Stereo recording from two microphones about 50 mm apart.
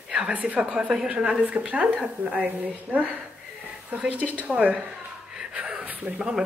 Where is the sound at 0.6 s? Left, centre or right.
Centre.